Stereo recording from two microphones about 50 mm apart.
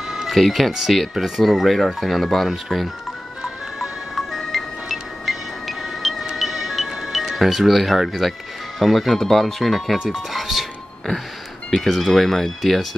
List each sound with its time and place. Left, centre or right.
0.1 s music: centre
0.4 s speech: centre
3.8 s music: centre
9.1 s speech: centre
9.9 s speech: centre
11.7 s speech: centre